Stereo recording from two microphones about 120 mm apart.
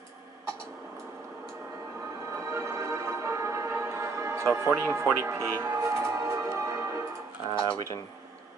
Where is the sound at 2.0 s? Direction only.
25° right (ahead or behind).